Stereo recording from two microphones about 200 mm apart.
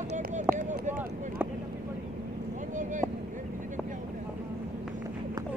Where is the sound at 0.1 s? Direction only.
35° right (ahead or behind).